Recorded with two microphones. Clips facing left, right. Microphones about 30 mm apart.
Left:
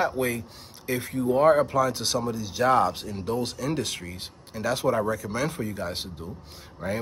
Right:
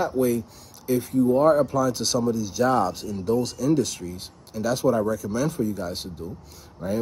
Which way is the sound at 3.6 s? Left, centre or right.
Left.